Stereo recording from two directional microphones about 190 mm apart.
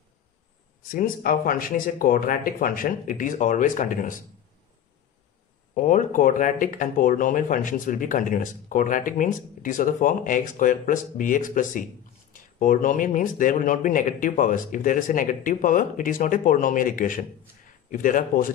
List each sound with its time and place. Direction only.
0.9 s speech: 50° left (ahead or behind)
5.8 s speech: 40° left (ahead or behind)